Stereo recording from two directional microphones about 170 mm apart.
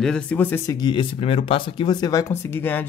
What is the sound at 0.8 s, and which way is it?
Speech, 30° left (ahead or behind).